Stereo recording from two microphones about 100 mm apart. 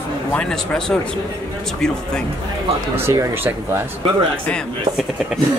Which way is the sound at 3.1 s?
25° right (ahead or behind).